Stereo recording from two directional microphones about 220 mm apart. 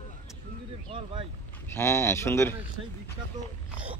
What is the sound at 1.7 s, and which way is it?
Speech, 10° left (ahead or behind).